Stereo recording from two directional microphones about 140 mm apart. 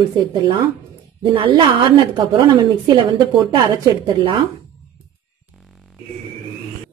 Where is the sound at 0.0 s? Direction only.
35° right (ahead or behind).